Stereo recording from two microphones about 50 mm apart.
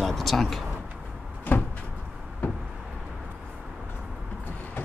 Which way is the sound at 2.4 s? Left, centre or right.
Left.